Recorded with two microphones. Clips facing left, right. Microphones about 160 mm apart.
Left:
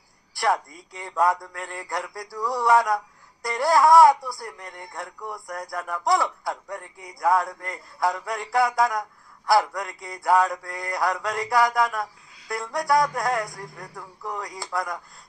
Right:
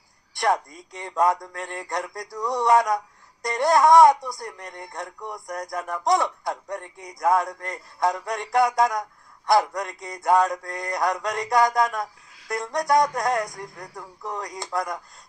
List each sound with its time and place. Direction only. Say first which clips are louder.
0.4 s speech: right 1 dB; 20° right (ahead or behind)